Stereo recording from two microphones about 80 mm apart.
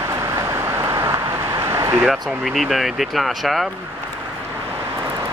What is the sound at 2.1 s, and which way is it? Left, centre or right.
Speech, centre.